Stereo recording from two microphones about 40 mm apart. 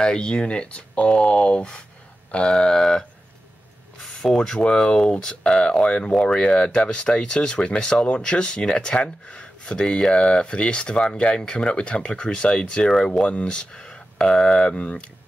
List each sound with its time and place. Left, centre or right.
0.0 s speech: left
4.4 s speech: centre